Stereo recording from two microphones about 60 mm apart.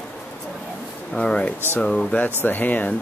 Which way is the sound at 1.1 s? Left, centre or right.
Centre.